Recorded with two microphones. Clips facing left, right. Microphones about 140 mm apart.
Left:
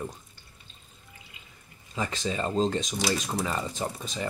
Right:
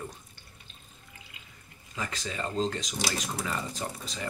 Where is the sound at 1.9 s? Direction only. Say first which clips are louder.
Left 5 dB; 25° left (ahead or behind).